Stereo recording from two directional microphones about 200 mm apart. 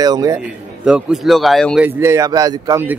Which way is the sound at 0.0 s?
20° right (ahead or behind).